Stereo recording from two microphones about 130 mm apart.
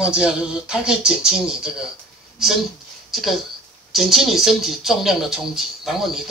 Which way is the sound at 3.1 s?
Centre (ahead or behind).